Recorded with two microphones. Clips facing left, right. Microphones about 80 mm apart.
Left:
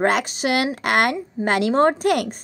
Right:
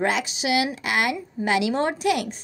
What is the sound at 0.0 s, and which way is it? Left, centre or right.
A woman's voice, left.